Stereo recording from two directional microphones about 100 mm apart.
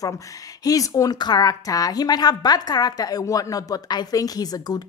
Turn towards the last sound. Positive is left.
turn(degrees=40)  # may be behind; listen again after turning